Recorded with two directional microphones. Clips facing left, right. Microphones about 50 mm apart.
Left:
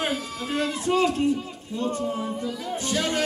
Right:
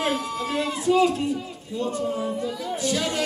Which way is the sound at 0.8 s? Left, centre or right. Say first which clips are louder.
Right 4 dB; left.